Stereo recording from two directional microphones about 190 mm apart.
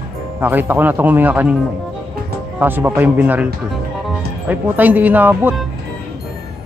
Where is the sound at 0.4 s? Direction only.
10° right (ahead or behind).